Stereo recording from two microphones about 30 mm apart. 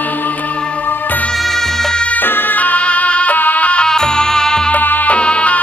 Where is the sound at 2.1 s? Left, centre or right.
Left.